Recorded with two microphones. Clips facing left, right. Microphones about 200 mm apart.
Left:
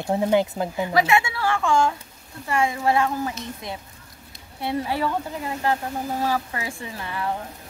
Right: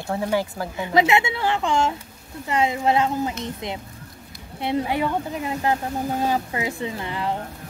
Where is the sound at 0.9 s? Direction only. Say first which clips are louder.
Right 3 dB; 20° right (ahead or behind).